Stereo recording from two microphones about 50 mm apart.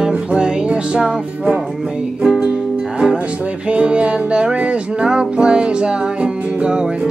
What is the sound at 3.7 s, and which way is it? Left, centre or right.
Music, right.